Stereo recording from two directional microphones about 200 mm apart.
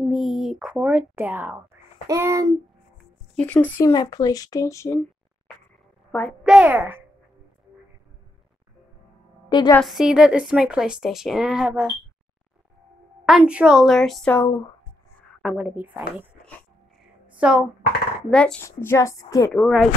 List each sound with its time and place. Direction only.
0.1 s a woman's voice: centre (ahead or behind)
3.3 s speech: 5° left (ahead or behind)
6.4 s a woman's voice: 5° right (ahead or behind)
9.5 s a woman's voice: 20° left (ahead or behind)
9.8 s a woman's voice: centre (ahead or behind)
13.2 s a woman's voice: 5° right (ahead or behind)
15.4 s a woman's voice: 5° right (ahead or behind)
17.4 s a woman's voice: 5° right (ahead or behind); by 19.6 s 15° left (ahead or behind)
19.6 s a woman's voice: centre (ahead or behind)